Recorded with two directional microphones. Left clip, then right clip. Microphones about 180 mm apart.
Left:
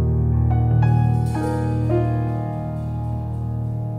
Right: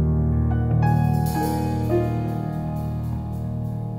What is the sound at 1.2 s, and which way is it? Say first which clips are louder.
Music: even; 60° right (ahead or behind).